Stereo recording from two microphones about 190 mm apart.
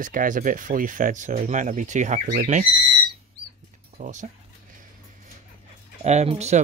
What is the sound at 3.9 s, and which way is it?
Speech, 40° right (ahead or behind).